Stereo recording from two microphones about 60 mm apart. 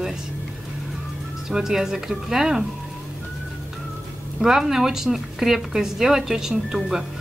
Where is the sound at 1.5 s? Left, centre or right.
Centre.